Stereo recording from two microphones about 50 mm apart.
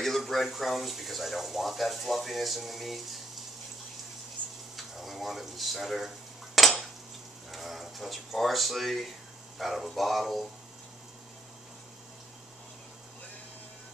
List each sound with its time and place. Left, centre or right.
0.0 s speech: centre
4.4 s frying: right
4.7 s a sound: centre
7.5 s speech: centre